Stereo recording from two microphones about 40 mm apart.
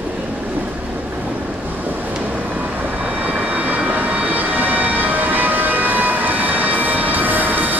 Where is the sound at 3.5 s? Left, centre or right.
Right.